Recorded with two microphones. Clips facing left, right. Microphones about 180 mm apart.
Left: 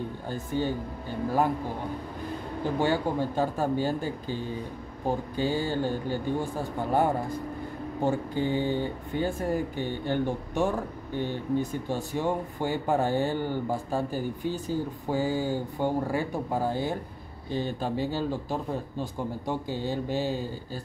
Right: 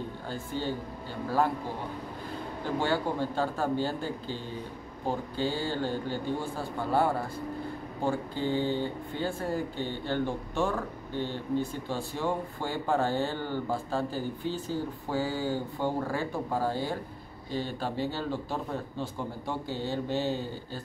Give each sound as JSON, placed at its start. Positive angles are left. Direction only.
{"t": 0.3, "sound": "speech", "side_deg": 15}
{"t": 2.8, "sound": "speech", "side_deg": 15}